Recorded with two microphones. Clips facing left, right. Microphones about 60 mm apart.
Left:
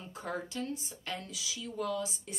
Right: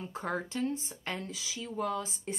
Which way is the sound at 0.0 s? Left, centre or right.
Right.